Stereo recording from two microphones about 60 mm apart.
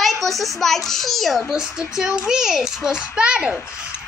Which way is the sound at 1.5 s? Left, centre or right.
Centre.